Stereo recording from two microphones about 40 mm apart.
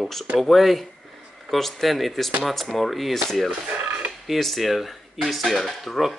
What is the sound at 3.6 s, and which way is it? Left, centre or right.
Speech, right.